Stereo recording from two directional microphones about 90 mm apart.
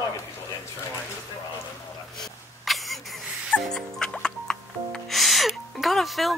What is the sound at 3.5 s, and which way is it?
Music, 5° left (ahead or behind).